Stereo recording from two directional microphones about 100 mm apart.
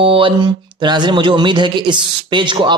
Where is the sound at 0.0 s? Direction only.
65° right (ahead or behind).